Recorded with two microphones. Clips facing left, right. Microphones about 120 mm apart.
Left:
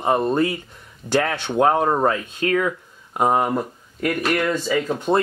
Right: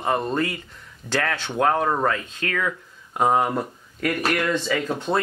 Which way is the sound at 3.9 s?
25° left (ahead or behind).